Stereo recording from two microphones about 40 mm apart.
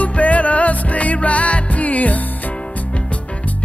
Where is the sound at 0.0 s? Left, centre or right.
Left.